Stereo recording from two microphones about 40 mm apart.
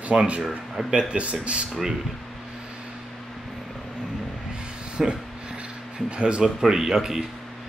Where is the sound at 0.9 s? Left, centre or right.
Right.